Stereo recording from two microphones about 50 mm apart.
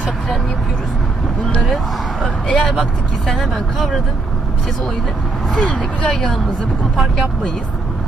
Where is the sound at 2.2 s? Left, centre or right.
Centre.